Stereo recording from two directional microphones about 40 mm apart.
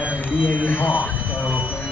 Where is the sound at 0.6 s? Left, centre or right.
Left.